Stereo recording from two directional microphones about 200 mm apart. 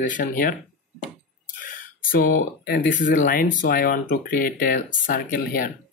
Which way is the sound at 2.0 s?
50° left (ahead or behind).